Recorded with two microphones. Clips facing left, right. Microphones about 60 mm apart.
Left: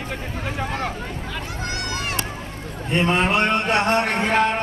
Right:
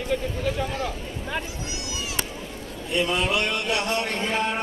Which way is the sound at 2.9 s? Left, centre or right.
Left.